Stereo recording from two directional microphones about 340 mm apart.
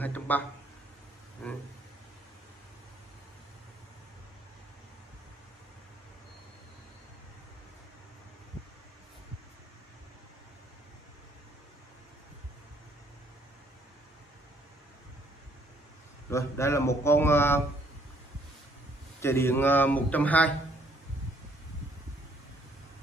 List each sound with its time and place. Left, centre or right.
0.0 s a sound: centre
16.3 s speech: centre
19.2 s a man's voice: centre